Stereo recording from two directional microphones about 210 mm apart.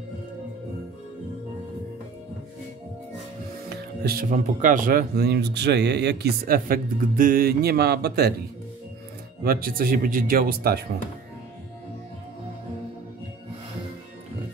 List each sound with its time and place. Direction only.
3.6 s speech: 50° right (ahead or behind)
9.4 s speech: 45° right (ahead or behind)